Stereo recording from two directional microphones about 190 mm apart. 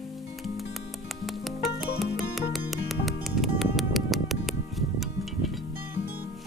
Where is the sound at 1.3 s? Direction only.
Centre (ahead or behind).